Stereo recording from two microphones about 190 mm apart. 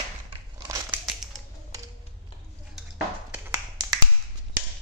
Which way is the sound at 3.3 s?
15° right (ahead or behind).